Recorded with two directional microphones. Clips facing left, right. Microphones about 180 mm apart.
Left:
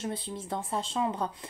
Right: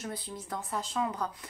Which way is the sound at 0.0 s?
25° left (ahead or behind).